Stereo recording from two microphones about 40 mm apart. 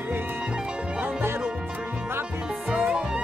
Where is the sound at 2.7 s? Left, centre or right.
Right.